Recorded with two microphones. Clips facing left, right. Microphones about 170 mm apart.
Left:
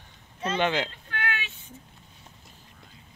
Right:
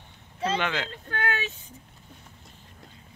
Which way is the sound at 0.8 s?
40° right (ahead or behind).